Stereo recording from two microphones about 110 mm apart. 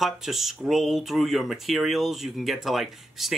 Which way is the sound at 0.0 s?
5° right (ahead or behind).